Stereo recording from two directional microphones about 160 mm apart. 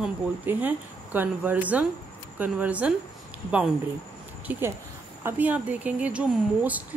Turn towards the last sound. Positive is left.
turn(degrees=-10)  # may be behind; listen again after turning